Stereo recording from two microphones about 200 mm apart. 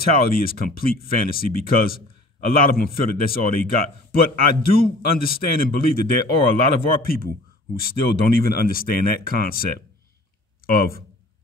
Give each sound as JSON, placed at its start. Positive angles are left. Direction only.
{"t": 0.0, "sound": "a man's voice", "side_deg": 45}